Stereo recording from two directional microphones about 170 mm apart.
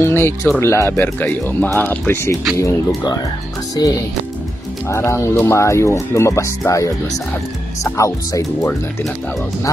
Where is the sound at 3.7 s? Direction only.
20° left (ahead or behind).